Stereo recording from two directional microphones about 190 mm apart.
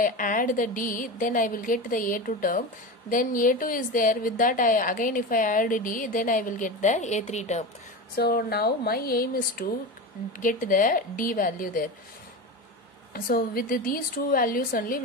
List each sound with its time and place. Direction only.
0.0 s a woman's voice: 45° left (ahead or behind)
8.2 s a woman's voice: 55° left (ahead or behind)
13.1 s a woman's voice: 50° left (ahead or behind)